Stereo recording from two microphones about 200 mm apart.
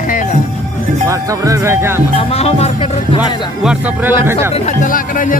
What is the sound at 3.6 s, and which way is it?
Speech, 5° right (ahead or behind).